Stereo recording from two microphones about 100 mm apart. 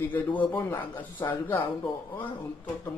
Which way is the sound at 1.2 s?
30° left (ahead or behind).